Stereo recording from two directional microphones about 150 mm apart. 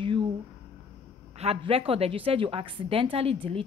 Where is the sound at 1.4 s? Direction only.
40° right (ahead or behind).